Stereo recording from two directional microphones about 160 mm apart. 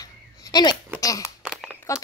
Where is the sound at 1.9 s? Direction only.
20° left (ahead or behind).